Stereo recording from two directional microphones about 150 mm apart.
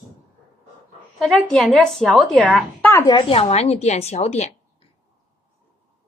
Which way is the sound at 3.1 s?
40° left (ahead or behind).